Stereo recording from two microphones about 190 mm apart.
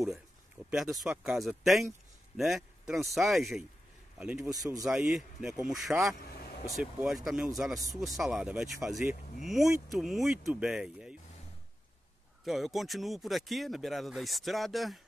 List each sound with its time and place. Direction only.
0.7 s a man's voice: centre (ahead or behind)
4.5 s speech: 20° right (ahead or behind)
4.8 s speech: 5° right (ahead or behind)
6.1 s vehicle: 55° left (ahead or behind)
6.6 s speech: 5° right (ahead or behind)
12.4 s speech: centre (ahead or behind)